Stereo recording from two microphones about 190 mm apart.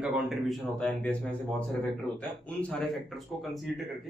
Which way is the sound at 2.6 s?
5° left (ahead or behind).